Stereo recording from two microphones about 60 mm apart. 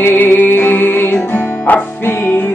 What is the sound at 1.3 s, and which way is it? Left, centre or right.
Music, left.